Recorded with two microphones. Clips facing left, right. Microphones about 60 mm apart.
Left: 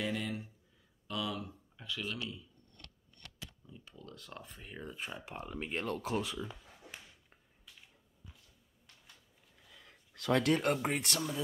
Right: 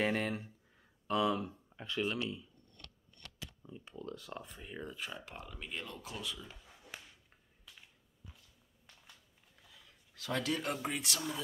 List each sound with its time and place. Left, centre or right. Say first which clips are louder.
0.0 s speech: right 3 dB; right
3.6 s speech: right 6 dB; right
4.6 s speech: right 2 dB; centre
4.9 s speech: left 1 dB; left
5.4 s speech: left 11 dB; left
6.2 s speech: left 4 dB; left
10.1 s speech: left 6 dB; left